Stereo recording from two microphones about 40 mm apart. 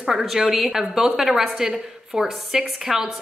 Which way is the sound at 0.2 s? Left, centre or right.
Centre.